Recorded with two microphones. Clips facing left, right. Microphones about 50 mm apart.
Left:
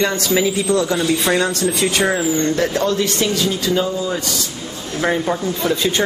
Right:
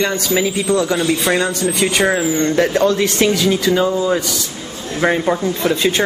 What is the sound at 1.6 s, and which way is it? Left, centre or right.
Speech, centre.